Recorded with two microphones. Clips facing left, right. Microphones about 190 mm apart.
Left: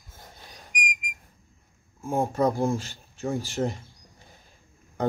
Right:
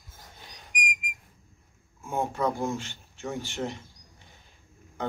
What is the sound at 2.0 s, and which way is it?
Speech, 35° left (ahead or behind).